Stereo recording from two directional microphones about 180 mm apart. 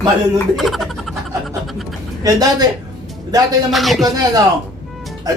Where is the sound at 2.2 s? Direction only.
20° right (ahead or behind).